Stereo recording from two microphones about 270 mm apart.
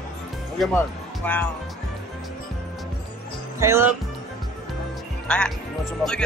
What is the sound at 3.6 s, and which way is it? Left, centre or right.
Speech, centre.